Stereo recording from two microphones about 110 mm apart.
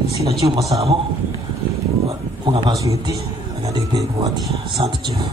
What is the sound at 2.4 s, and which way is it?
Speech, 50° right (ahead or behind).